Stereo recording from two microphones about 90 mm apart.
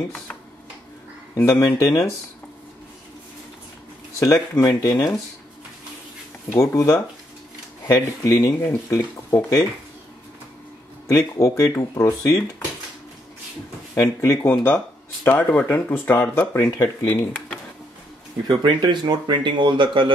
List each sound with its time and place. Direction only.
1.3 s speech: 40° left (ahead or behind)
4.2 s speech: 40° left (ahead or behind)
6.5 s speech: 30° left (ahead or behind)
7.9 s speech: 45° left (ahead or behind)
11.1 s speech: 35° left (ahead or behind)
13.9 s speech: 40° left (ahead or behind); by 17.6 s 20° left (ahead or behind)
18.5 s speech: 55° right (ahead or behind)